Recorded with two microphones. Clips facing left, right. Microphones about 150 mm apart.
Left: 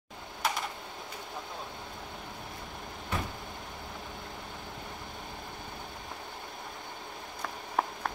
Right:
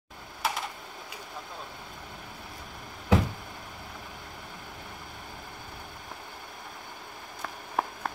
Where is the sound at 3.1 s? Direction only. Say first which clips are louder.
Right 11 dB; 90° right.